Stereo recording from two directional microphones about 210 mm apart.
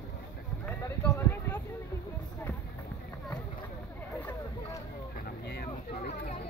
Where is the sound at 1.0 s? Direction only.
10° left (ahead or behind).